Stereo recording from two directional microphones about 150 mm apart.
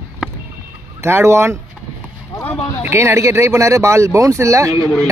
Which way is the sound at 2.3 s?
20° left (ahead or behind).